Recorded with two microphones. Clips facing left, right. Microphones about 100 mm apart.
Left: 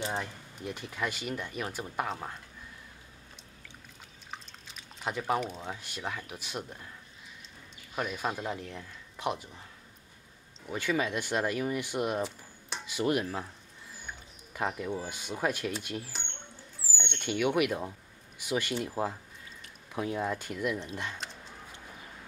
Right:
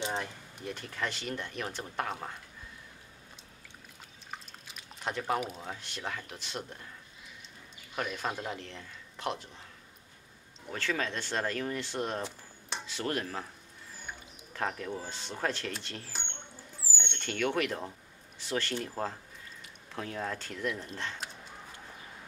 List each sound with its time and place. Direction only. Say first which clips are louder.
0.2 s speech: left 1 dB; 5° left (ahead or behind)
4.3 s drip: even; 5° right (ahead or behind)
5.4 s speech: left 2 dB; centre (ahead or behind)
7.9 s speech: left 2 dB; 5° left (ahead or behind)
10.7 s speech: left 3 dB; 10° left (ahead or behind)
14.5 s speech: left 2 dB; 10° left (ahead or behind)